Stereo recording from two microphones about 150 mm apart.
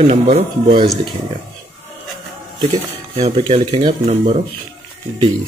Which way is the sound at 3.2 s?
40° right (ahead or behind).